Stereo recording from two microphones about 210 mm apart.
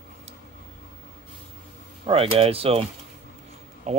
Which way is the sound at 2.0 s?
25° right (ahead or behind).